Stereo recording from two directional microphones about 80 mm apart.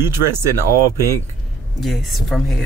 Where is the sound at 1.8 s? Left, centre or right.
Centre.